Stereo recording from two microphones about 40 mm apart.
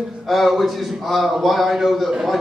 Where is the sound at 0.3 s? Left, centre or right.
Centre.